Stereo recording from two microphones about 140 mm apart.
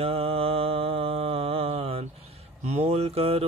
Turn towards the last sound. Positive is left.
turn(degrees=-45)  # may be behind; listen again after turning